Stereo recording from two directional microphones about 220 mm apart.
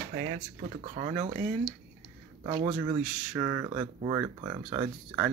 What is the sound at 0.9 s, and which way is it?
Speech, 25° right (ahead or behind).